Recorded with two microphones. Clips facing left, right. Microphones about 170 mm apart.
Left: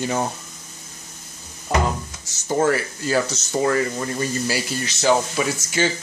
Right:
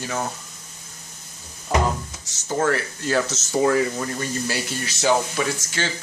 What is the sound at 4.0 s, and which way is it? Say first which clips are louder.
Speech: left 2 dB; 5° left (ahead or behind).